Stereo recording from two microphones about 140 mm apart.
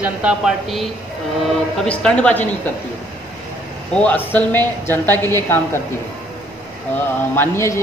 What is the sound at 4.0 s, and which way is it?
Speech, 10° left (ahead or behind).